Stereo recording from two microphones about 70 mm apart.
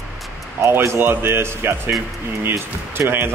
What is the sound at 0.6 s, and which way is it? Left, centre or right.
Speech, right.